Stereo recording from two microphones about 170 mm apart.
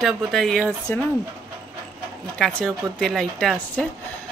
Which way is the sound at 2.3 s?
5° left (ahead or behind).